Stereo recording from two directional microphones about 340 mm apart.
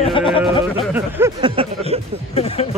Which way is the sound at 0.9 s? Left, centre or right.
Centre.